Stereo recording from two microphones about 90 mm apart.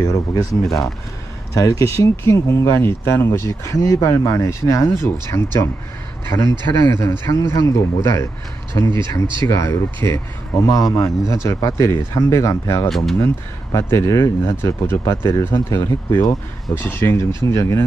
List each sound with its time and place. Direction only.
0.3 s speech: 45° left (ahead or behind)
6.9 s speech: 30° left (ahead or behind)
12.8 s speech: centre (ahead or behind)
13.2 s speech: 35° left (ahead or behind)